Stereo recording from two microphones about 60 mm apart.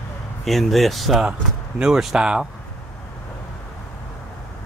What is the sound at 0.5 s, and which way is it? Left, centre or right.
Speech, centre.